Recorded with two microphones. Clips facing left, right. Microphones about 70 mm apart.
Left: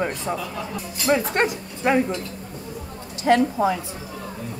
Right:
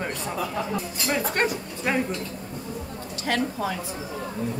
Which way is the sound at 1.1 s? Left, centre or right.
Left.